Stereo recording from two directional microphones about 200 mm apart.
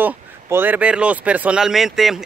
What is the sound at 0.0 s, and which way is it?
Speech, 10° right (ahead or behind).